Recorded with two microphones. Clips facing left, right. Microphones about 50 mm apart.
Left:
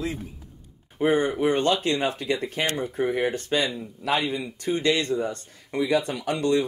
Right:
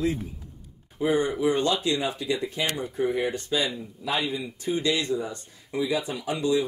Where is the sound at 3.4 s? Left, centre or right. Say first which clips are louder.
Left 2 dB; left.